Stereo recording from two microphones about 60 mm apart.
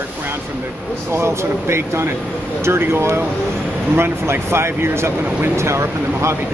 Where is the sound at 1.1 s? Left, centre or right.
Right.